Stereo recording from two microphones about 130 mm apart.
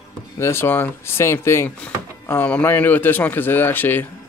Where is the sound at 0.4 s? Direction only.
20° left (ahead or behind).